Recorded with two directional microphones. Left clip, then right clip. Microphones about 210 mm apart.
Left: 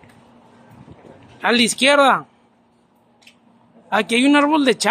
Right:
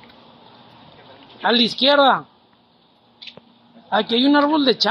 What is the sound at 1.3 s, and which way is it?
Speech, 25° left (ahead or behind).